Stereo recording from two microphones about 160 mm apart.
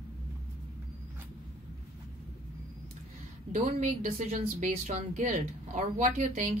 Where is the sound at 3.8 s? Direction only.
45° right (ahead or behind).